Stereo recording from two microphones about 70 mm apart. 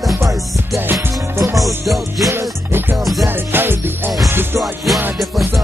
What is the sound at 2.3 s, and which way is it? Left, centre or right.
Music, right.